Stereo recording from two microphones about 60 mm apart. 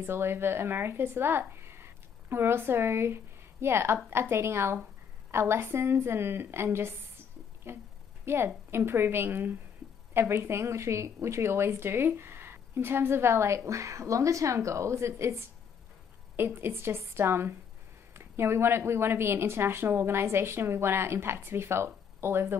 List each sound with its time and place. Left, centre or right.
0.0 s a woman's voice: right
13.7 s speech: right
16.3 s a woman's voice: right